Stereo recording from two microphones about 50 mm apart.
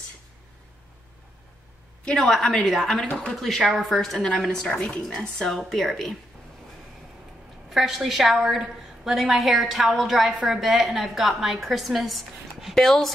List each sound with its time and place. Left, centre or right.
2.0 s a woman's voice: centre
5.4 s a woman's voice: centre
7.7 s a woman's voice: centre